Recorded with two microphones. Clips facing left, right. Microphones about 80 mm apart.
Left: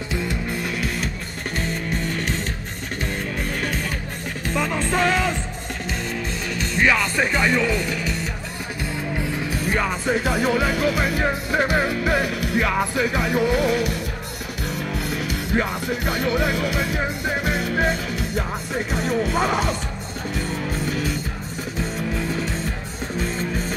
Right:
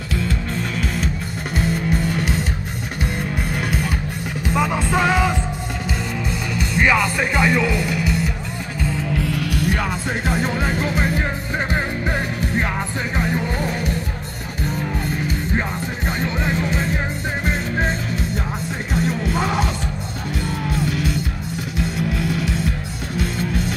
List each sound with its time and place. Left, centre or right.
0.1 s music: centre
0.6 s music: centre
4.6 s music: centre
6.5 s speech: centre
10.2 s music: left
15.0 s music: left
16.1 s music: left
20.7 s music: left
23.2 s music: right